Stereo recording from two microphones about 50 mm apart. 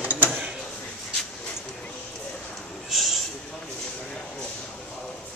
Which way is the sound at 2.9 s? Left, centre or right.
Centre.